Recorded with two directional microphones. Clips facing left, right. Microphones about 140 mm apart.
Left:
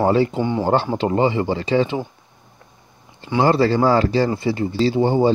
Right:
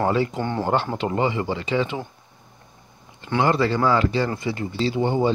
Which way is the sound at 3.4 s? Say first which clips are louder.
Left 4 dB; 35° left (ahead or behind).